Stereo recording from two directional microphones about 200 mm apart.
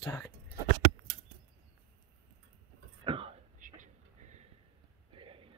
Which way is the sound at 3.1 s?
25° right (ahead or behind).